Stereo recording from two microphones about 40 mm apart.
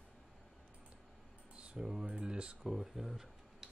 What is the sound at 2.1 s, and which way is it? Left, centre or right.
Speech, right.